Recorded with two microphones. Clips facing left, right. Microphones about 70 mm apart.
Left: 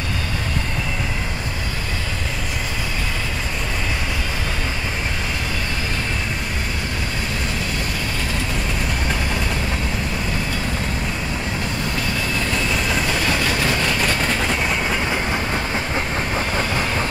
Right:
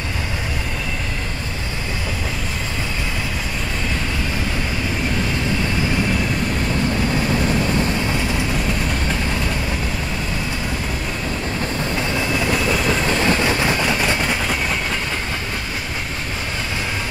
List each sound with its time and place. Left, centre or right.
13.2 s vehicle: right
14.2 s vehicle: centre